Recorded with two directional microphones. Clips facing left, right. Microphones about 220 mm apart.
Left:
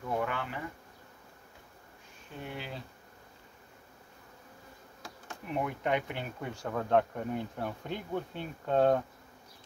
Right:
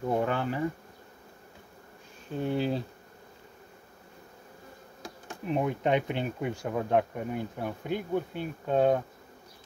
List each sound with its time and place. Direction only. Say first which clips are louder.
0.1 s speech: right 5 dB; 35° right (ahead or behind)
2.3 s speech: right 13 dB; 35° right (ahead or behind)
5.0 s speech: right 8 dB; 20° right (ahead or behind)